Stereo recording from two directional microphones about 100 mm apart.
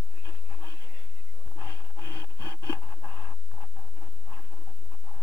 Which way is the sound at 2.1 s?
30° left (ahead or behind).